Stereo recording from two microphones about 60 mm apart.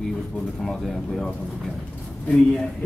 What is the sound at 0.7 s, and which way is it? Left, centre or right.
Speech, centre.